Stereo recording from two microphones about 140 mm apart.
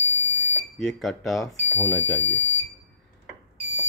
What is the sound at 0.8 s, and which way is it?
Speech, centre (ahead or behind).